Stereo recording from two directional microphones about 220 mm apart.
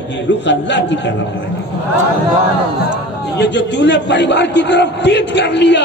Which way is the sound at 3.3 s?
50° left (ahead or behind).